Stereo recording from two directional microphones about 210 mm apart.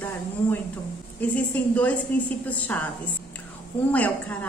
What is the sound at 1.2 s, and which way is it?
A woman's voice, 5° left (ahead or behind).